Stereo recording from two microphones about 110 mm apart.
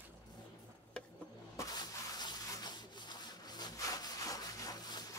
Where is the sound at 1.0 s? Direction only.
10° left (ahead or behind).